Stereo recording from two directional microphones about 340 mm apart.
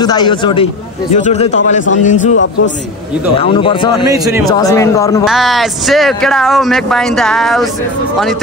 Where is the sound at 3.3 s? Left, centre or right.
Centre.